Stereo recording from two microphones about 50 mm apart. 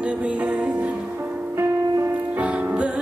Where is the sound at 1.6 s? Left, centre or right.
Right.